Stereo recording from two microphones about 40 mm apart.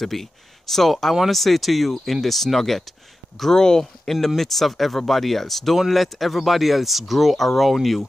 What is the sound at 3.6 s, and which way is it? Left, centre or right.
Speech, centre.